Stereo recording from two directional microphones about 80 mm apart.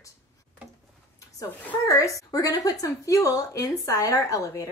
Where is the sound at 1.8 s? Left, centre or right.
Left.